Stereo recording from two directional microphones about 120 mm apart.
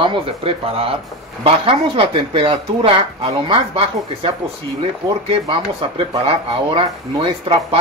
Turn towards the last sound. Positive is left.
turn(degrees=-50)  # may be behind; listen again after turning